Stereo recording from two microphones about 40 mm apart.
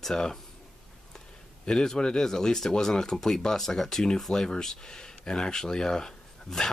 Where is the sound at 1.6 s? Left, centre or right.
Centre.